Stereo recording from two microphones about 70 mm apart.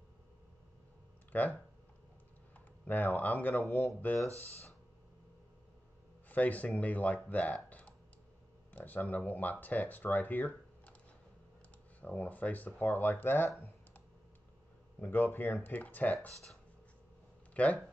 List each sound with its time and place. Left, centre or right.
1.3 s speech: left
2.8 s speech: left
6.2 s speech: left
8.7 s speech: left
12.0 s speech: left
15.0 s speech: left
17.6 s speech: centre